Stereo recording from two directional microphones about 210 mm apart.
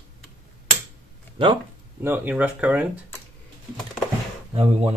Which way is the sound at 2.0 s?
10° right (ahead or behind).